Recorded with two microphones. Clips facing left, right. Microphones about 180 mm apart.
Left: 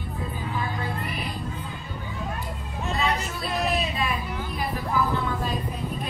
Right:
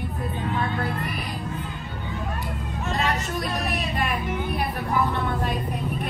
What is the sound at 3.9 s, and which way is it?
Vehicle, 70° right (ahead or behind).